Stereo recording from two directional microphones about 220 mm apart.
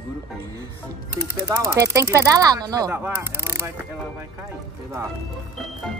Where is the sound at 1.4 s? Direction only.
10° right (ahead or behind).